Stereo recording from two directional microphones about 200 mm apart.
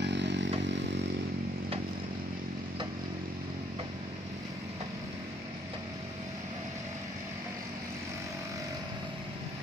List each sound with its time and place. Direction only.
0.0 s motorcycle: 60° right (ahead or behind)